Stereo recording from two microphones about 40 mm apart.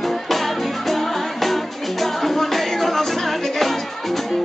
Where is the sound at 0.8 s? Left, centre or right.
Centre.